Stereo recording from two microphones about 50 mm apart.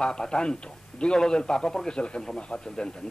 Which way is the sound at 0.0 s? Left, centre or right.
Centre.